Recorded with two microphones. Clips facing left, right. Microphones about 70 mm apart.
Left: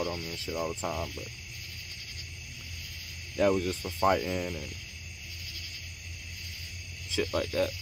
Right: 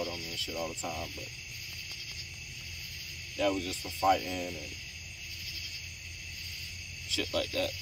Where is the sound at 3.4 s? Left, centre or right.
Left.